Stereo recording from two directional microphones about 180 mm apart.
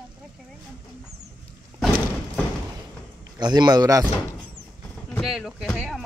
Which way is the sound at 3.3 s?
25° right (ahead or behind).